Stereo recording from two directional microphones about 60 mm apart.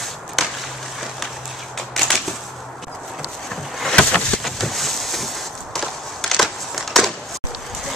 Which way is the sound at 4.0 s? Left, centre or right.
Left.